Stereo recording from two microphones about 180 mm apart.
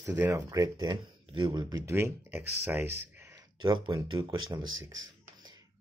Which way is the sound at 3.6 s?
25° right (ahead or behind).